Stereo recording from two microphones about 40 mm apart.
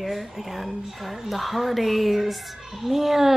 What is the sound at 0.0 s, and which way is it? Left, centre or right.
Speech, centre.